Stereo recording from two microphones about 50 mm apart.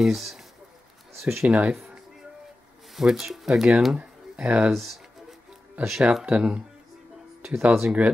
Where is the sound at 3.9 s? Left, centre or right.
Centre.